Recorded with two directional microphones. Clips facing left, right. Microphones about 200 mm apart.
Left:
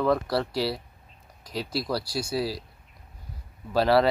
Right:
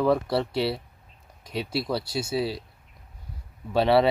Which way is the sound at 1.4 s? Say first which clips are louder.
Right 1 dB; 25° right (ahead or behind).